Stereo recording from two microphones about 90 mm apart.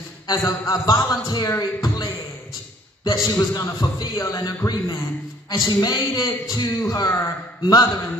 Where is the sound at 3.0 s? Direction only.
40° left (ahead or behind).